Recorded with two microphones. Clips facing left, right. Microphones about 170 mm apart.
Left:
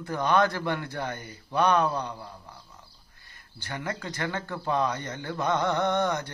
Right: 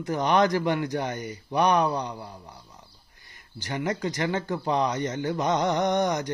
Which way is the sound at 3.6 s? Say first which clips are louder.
Right 6 dB; 15° right (ahead or behind).